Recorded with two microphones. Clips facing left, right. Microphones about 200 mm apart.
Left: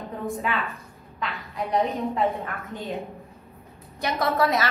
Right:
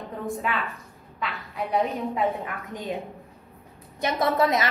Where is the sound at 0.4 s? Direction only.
Centre (ahead or behind).